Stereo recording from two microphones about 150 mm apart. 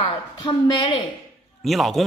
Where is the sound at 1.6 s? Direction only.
Centre (ahead or behind).